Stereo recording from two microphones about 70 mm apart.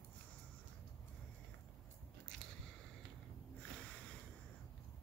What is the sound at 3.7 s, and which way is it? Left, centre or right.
Sniff, centre.